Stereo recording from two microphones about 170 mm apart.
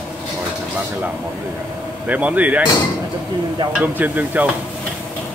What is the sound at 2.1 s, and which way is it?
Speech, 10° right (ahead or behind).